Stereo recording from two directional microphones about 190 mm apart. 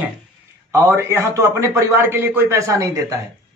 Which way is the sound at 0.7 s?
15° right (ahead or behind).